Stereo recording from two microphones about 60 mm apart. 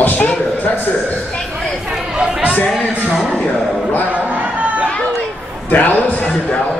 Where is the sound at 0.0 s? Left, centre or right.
Left.